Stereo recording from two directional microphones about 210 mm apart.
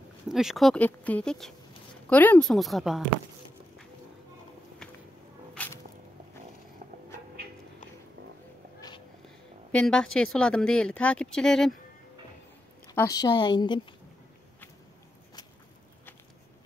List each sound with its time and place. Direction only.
0.3 s speech: centre (ahead or behind)
5.5 s music: 5° left (ahead or behind)
9.7 s a woman's voice: 5° left (ahead or behind)
12.9 s a woman's voice: 15° left (ahead or behind)